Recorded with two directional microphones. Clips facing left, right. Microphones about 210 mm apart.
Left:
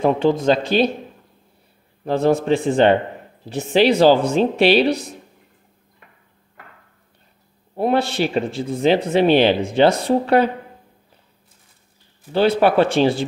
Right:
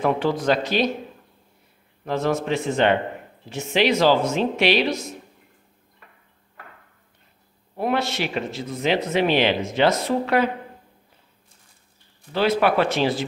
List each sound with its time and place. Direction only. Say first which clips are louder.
0.0 s speech: left 5 dB; 25° left (ahead or behind)
2.0 s a man's voice: left 6 dB; 30° left (ahead or behind)
7.7 s a man's voice: left 5 dB; 30° left (ahead or behind)
12.3 s speech: left 4 dB; 30° left (ahead or behind)